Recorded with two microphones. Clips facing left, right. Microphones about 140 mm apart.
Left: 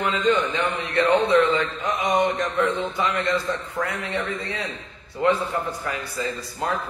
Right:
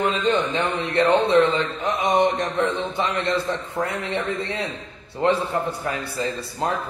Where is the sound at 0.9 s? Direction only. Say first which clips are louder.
Right 1 dB; 25° right (ahead or behind).